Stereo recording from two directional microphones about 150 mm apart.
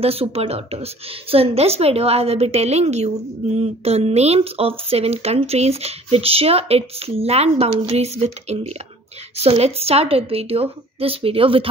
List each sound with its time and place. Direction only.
0.0 s a woman's voice: 40° right (ahead or behind)